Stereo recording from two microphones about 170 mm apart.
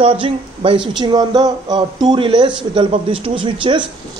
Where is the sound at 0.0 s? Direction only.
35° right (ahead or behind).